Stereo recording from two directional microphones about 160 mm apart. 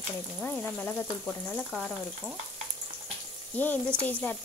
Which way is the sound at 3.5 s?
10° left (ahead or behind).